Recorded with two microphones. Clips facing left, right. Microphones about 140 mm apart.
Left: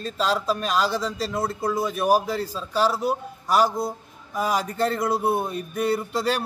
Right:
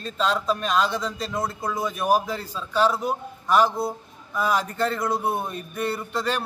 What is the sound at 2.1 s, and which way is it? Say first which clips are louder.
Speech: even; 35° left (ahead or behind).